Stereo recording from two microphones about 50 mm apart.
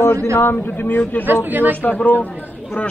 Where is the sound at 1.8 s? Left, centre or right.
Left.